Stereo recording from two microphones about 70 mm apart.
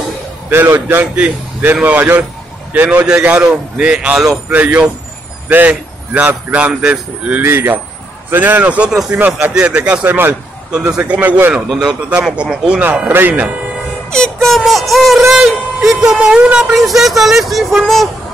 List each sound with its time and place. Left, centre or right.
0.5 s speech: right
1.1 s a man's voice: right
7.4 s a man's voice: right; by 9.8 s centre
10.0 s speech: right
10.7 s speech: centre
11.0 s a man's voice: right
11.8 s speech: centre
13.1 s a man's voice: right
14.1 s speech: centre